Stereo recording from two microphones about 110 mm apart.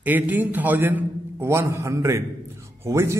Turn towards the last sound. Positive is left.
turn(degrees=-25)  # may be behind; listen again after turning